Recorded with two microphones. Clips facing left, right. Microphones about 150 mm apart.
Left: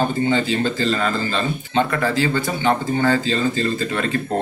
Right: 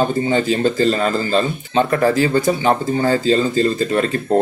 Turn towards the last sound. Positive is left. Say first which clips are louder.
# right 5 dB
turn(degrees=-35)  # may be behind; listen again after turning